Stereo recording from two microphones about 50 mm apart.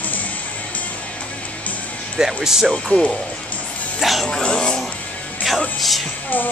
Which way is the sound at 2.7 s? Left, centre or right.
Centre.